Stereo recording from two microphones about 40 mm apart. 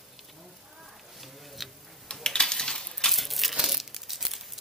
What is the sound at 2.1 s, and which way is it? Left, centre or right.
Typing, left.